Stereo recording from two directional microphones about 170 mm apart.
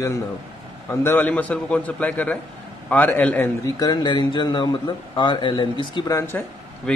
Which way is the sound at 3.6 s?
25° left (ahead or behind).